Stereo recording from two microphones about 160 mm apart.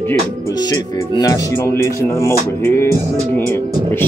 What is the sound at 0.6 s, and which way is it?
Speech, 25° left (ahead or behind).